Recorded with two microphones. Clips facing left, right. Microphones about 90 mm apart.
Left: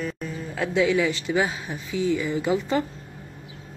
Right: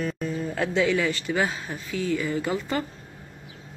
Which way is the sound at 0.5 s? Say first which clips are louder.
Left 3 dB; 10° left (ahead or behind).